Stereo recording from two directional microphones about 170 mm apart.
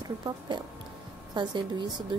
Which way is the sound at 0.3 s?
25° right (ahead or behind).